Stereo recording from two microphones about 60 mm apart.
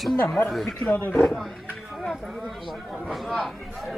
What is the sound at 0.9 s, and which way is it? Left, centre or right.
Speech, left.